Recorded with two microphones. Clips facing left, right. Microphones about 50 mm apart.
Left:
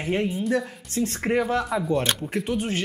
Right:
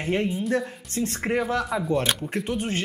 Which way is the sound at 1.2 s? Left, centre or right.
Centre.